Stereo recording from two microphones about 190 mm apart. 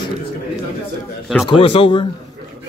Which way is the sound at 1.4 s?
30° left (ahead or behind).